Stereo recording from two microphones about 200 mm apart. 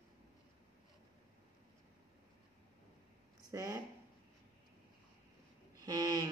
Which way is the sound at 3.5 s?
15° right (ahead or behind).